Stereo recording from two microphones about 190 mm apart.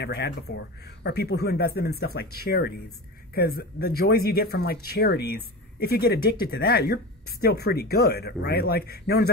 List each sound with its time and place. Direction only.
0.0 s speech: 60° left (ahead or behind)